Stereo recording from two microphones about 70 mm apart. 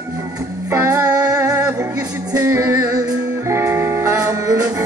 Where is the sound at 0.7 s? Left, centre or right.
Right.